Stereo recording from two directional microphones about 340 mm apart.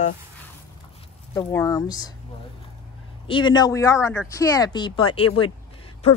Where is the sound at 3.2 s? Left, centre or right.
Centre.